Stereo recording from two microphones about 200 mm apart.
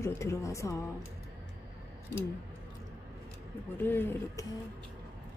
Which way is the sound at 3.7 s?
10° left (ahead or behind).